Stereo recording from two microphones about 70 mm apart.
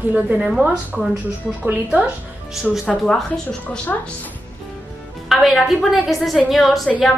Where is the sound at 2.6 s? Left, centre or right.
Centre.